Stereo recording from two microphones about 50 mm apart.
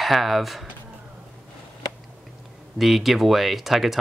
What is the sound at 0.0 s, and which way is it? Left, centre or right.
Speech, centre.